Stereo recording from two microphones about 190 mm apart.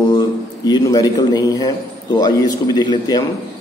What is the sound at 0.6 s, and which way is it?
A man's voice, 20° left (ahead or behind).